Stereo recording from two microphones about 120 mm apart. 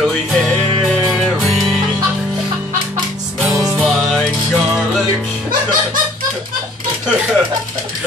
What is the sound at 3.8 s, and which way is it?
Music, centre (ahead or behind).